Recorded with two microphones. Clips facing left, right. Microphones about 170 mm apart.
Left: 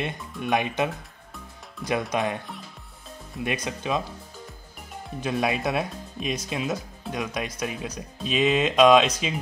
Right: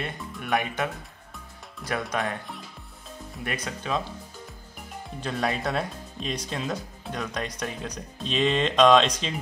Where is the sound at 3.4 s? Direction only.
15° left (ahead or behind).